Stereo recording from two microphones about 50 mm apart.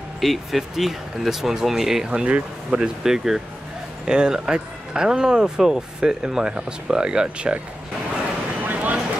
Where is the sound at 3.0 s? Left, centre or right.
Centre.